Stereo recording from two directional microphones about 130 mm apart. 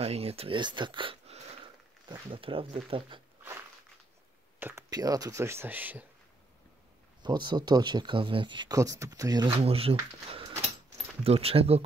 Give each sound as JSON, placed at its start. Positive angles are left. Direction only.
{"t": 0.0, "sound": "speech", "side_deg": -50}
{"t": 1.2, "sound": "a sound", "side_deg": -55}
{"t": 2.0, "sound": "speech", "side_deg": -40}
{"t": 4.6, "sound": "speech", "side_deg": -15}
{"t": 4.8, "sound": "speech", "side_deg": -30}
{"t": 7.2, "sound": "speech", "side_deg": -35}
{"t": 8.7, "sound": "speech", "side_deg": -25}
{"t": 9.6, "sound": "speech", "side_deg": -45}
{"t": 11.2, "sound": "speech", "side_deg": -50}